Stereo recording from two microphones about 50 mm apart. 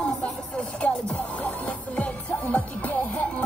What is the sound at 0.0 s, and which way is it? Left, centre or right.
Music, left.